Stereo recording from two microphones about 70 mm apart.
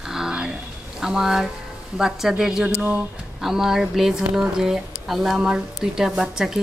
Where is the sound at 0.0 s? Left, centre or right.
Centre.